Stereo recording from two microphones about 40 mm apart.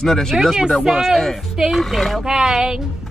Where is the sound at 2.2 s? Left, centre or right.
Centre.